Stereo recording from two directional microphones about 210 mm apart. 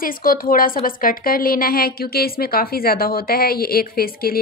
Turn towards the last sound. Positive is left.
turn(degrees=45)  # may be behind; listen again after turning